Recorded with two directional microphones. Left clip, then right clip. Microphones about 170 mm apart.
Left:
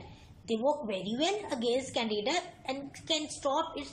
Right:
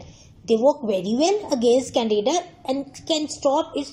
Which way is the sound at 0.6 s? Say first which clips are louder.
Right 10 dB; 35° right (ahead or behind).